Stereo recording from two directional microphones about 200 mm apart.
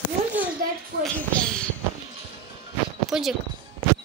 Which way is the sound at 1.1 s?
5° left (ahead or behind).